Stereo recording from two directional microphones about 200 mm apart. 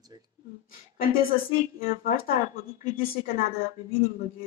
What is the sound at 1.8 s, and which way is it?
Speech, 45° left (ahead or behind).